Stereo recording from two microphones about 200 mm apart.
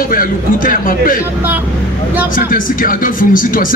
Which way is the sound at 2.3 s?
45° left (ahead or behind).